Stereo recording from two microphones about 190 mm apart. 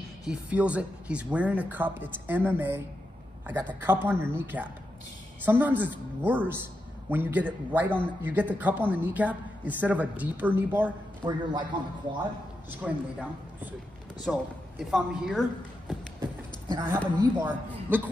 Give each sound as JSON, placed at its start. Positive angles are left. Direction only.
{"t": 0.3, "sound": "a woman's voice", "side_deg": -5}
{"t": 11.2, "sound": "speech", "side_deg": -20}
{"t": 12.8, "sound": "a woman's voice", "side_deg": -10}
{"t": 16.2, "sound": "clip-clop", "side_deg": -25}
{"t": 17.4, "sound": "a woman's voice", "side_deg": -10}